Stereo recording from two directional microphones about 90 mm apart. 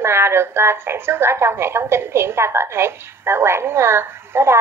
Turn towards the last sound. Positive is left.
turn(degrees=-25)  # may be behind; listen again after turning